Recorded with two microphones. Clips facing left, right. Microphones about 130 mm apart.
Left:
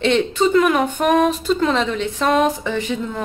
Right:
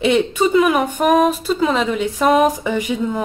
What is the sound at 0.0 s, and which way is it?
Speech, 10° right (ahead or behind).